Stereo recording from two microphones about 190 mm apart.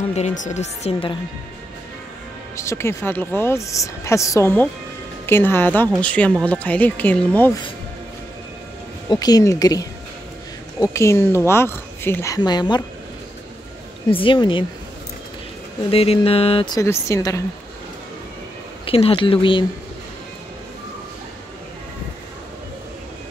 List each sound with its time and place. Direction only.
0.1 s speech: 40° left (ahead or behind)
2.5 s speech: 15° left (ahead or behind)
9.1 s a woman's voice: 20° left (ahead or behind)
14.1 s a woman's voice: 25° left (ahead or behind)
15.9 s a woman's voice: 30° left (ahead or behind)
18.9 s a woman's voice: 30° left (ahead or behind)